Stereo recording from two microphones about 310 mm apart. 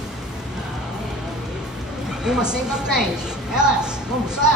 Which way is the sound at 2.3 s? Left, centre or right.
Centre.